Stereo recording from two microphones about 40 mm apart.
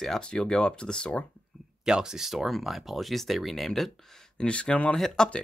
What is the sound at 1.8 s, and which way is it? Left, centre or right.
Speech, centre.